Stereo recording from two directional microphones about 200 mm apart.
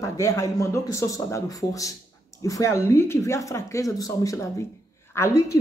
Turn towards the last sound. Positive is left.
turn(degrees=15)  # may be behind; listen again after turning